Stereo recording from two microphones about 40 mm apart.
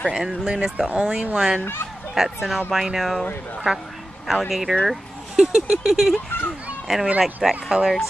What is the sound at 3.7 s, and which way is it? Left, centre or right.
Speech, centre.